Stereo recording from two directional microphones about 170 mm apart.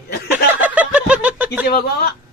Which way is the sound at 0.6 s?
10° right (ahead or behind).